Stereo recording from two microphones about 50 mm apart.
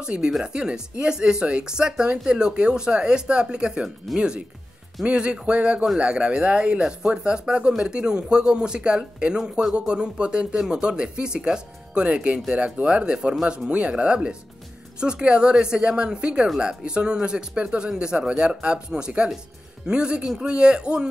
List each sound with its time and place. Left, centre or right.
0.0 s speech: centre
13.7 s speech: right